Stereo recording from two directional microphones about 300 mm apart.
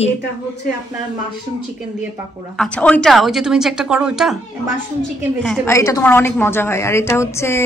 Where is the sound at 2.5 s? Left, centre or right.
Centre.